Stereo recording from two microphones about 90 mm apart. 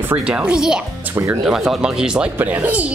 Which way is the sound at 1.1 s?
20° right (ahead or behind).